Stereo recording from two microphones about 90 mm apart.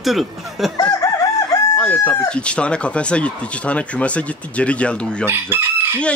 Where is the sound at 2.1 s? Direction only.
15° left (ahead or behind).